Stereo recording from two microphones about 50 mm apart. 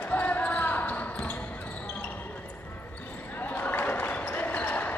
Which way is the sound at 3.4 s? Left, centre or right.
Left.